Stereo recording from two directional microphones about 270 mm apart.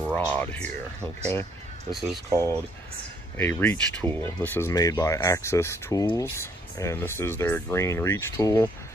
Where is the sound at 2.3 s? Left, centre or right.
Centre.